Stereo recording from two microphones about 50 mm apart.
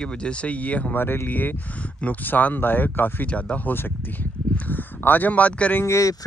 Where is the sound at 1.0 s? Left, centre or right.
Left.